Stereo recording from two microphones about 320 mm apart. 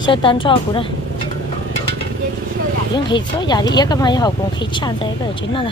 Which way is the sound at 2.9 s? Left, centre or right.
Centre.